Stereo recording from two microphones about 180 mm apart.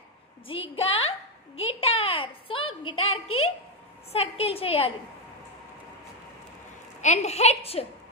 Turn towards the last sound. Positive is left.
turn(degrees=35)  # may be behind; listen again after turning